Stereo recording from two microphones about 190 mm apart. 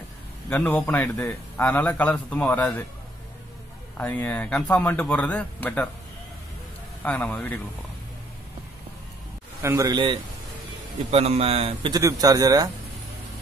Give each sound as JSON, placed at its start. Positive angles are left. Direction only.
{"t": 0.5, "sound": "a man's voice", "side_deg": 5}
{"t": 4.0, "sound": "a man's voice", "side_deg": 5}
{"t": 7.1, "sound": "a man's voice", "side_deg": 5}
{"t": 9.6, "sound": "a man's voice", "side_deg": -15}
{"t": 12.0, "sound": "a man's voice", "side_deg": -15}